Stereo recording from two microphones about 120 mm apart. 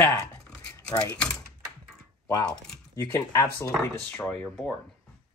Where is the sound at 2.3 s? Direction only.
35° left (ahead or behind).